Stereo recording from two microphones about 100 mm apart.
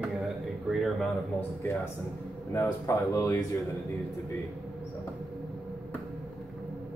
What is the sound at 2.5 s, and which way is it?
Speech, 30° left (ahead or behind).